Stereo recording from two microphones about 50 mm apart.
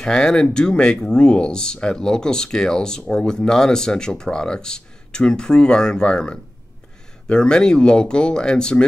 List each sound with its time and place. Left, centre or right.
0.0 s speech: centre